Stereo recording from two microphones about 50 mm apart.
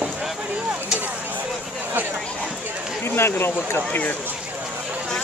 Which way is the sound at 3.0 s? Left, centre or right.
Left.